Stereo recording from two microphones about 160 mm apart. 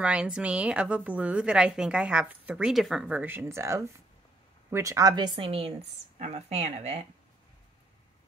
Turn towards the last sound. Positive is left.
turn(degrees=-40)  # may be behind; listen again after turning